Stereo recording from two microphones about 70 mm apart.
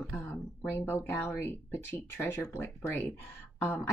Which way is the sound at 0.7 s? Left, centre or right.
Left.